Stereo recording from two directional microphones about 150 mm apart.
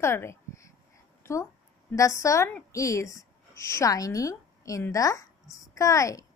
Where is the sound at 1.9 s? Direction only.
20° left (ahead or behind).